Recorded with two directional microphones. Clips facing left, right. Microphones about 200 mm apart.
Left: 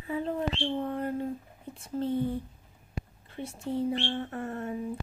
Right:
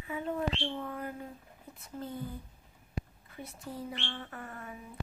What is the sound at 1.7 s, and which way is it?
Speech, 30° left (ahead or behind).